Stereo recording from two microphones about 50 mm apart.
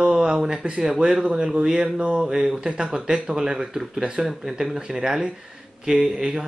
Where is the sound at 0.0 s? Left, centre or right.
Centre.